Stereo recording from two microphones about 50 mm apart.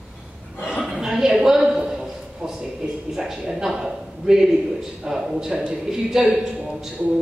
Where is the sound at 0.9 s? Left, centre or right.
Centre.